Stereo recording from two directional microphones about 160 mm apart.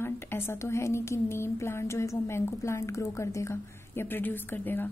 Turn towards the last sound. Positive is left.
turn(degrees=10)  # may be behind; listen again after turning